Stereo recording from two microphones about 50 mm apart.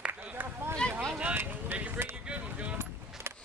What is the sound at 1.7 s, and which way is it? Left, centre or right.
Vehicle, right.